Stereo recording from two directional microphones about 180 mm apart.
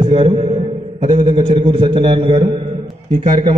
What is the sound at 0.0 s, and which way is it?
Music, 35° right (ahead or behind).